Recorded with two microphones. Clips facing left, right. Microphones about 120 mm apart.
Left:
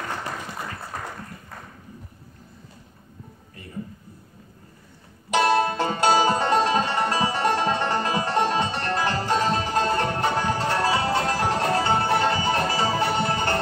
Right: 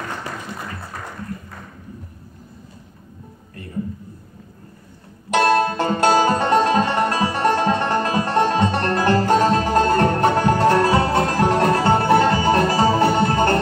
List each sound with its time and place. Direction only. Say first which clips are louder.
5.3 s music: right 3 dB; 55° right (ahead or behind)